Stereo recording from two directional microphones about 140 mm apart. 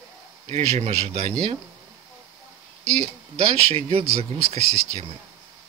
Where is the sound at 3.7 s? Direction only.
45° right (ahead or behind).